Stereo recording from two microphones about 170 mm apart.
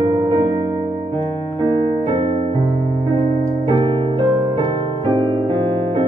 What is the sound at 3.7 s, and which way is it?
Music, 30° right (ahead or behind).